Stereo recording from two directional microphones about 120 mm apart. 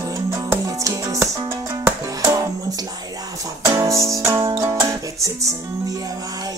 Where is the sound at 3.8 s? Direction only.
25° right (ahead or behind).